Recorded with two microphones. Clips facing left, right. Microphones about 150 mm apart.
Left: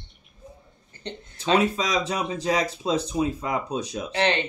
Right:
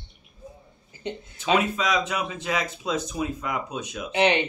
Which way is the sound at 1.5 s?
35° left (ahead or behind).